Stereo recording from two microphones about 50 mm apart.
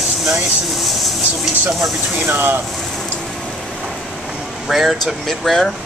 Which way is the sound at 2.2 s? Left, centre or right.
Right.